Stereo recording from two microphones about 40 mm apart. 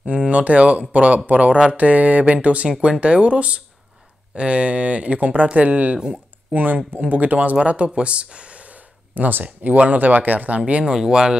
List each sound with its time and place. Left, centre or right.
0.0 s speech: right
6.5 s speech: right
7.5 s speech: right
10.7 s speech: right